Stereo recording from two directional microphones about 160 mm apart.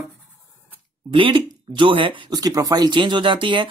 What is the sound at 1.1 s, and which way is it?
Speech, 35° right (ahead or behind).